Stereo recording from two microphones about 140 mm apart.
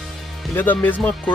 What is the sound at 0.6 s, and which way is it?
Speech, 15° left (ahead or behind).